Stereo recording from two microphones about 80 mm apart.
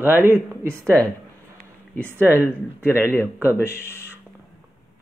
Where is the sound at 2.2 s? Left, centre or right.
Right.